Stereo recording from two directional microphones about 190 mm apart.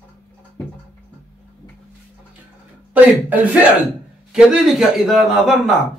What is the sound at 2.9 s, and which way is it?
Speech, 10° right (ahead or behind).